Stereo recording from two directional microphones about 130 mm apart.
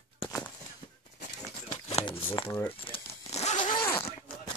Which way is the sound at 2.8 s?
45° left (ahead or behind).